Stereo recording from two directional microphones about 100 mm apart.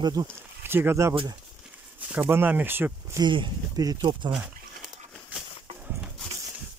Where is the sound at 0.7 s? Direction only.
25° right (ahead or behind).